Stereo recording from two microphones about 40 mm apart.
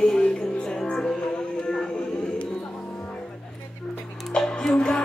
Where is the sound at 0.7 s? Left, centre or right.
Centre.